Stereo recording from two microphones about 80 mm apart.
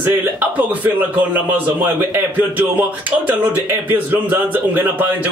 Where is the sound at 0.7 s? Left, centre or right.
Right.